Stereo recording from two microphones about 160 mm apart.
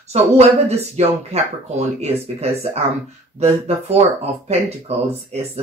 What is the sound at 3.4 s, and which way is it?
Speech, 40° right (ahead or behind).